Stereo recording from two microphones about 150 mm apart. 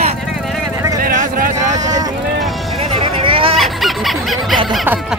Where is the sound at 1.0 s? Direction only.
70° right (ahead or behind).